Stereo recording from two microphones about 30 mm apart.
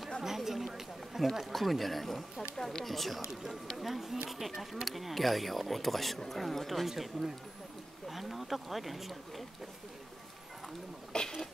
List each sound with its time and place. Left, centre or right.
0.2 s chatter: centre
1.1 s a sound: centre
1.5 s speech: centre
2.5 s speech: centre
3.7 s speech: centre
6.9 s speech: centre
8.1 s speech: centre
11.1 s a sound: left